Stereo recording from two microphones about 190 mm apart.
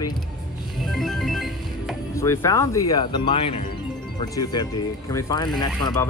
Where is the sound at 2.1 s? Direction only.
15° left (ahead or behind).